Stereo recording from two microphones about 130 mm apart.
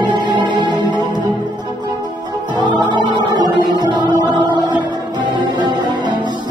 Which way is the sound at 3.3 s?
35° right (ahead or behind).